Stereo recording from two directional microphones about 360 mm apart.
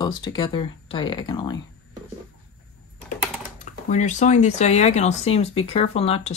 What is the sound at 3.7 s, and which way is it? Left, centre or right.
Speech, centre.